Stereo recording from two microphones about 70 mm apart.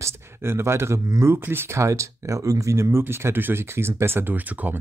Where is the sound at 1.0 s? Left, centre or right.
Right.